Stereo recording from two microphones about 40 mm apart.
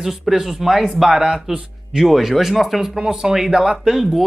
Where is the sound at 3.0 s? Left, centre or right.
Centre.